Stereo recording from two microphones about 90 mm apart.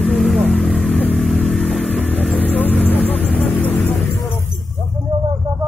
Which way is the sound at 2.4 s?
20° left (ahead or behind).